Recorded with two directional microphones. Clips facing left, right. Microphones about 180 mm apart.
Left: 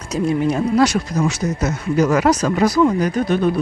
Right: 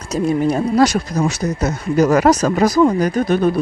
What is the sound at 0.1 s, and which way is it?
Speech, 35° right (ahead or behind).